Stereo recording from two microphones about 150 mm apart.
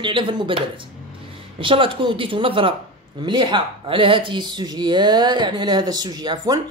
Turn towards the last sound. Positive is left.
turn(degrees=-25)  # may be behind; listen again after turning